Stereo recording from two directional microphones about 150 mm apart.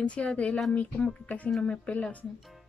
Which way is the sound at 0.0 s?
5° left (ahead or behind).